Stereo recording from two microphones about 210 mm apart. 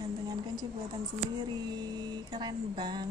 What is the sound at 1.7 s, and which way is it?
Music, 20° right (ahead or behind).